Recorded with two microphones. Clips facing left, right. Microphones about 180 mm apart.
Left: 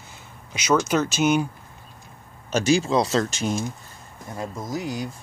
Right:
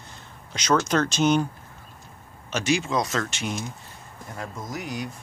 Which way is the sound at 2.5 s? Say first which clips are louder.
Left 4 dB; 35° left (ahead or behind).